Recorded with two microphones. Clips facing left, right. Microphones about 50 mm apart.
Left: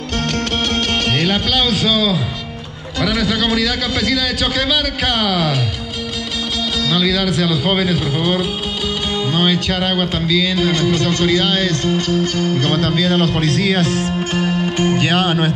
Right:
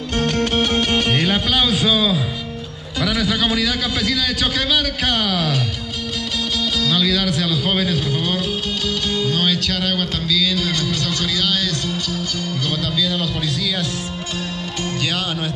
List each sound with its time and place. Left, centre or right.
0.2 s music: centre
3.0 s a man's voice: centre
6.8 s speech: centre
9.1 s music: left
14.1 s music: left